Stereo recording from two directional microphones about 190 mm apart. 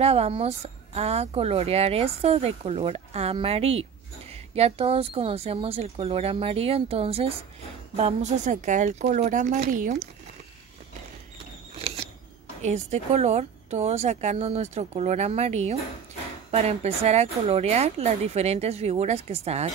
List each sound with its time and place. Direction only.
0.0 s speech: 30° right (ahead or behind)
11.7 s a sound: 30° right (ahead or behind)
12.6 s speech: 35° right (ahead or behind)